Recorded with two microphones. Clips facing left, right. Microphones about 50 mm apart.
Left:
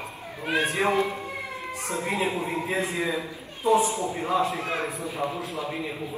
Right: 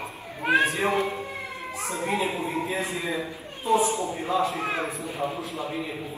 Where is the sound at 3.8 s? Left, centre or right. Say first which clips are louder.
Right 1 dB; right.